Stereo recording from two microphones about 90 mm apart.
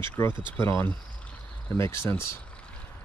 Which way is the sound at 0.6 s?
25° left (ahead or behind).